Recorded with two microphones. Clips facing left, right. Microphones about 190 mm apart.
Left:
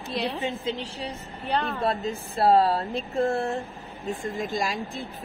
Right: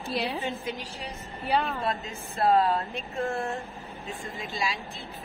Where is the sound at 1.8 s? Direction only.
35° left (ahead or behind).